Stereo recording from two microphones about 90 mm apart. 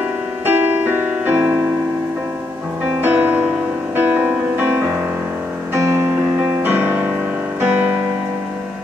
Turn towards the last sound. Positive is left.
turn(degrees=-20)  # may be behind; listen again after turning